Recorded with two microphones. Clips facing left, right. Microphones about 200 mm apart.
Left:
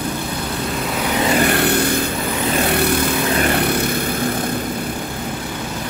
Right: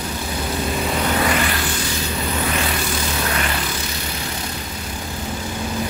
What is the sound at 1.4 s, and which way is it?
Vehicle, 60° left (ahead or behind).